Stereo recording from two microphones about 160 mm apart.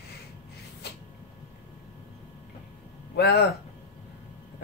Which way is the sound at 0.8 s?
90° left.